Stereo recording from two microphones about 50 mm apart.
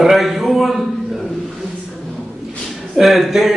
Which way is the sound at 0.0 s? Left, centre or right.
Centre.